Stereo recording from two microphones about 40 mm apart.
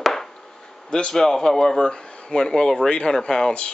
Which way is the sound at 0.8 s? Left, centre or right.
Centre.